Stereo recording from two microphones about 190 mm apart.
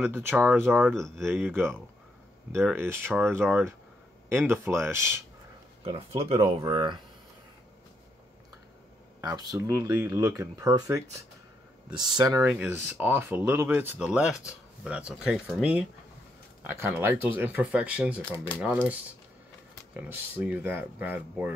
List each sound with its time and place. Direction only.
0.1 s speech: 10° right (ahead or behind)
1.4 s speech: 10° right (ahead or behind)
5.9 s speech: 30° right (ahead or behind)
9.2 s speech: 20° right (ahead or behind)
12.4 s speech: 10° right (ahead or behind)